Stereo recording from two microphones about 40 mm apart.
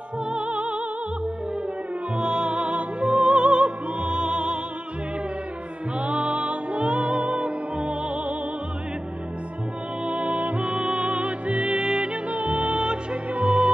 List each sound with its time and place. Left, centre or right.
0.3 s music: right
2.1 s music: right
5.9 s music: right
10.0 s music: right